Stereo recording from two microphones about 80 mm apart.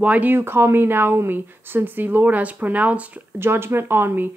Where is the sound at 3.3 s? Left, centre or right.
Right.